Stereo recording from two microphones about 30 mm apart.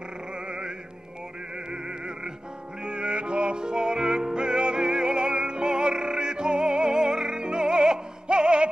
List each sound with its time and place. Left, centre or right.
0.3 s music: right